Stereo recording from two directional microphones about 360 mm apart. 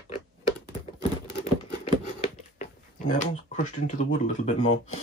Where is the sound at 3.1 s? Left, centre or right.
Centre.